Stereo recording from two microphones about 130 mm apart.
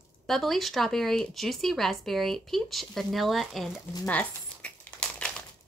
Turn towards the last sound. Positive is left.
turn(degrees=10)  # may be behind; listen again after turning